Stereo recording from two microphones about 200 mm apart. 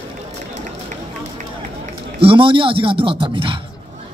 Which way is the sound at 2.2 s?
25° right (ahead or behind).